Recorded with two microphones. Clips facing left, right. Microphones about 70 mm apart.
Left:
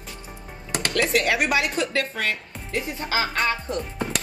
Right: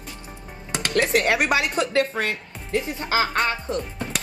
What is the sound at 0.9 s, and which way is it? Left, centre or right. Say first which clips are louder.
Speech: right 2 dB; right.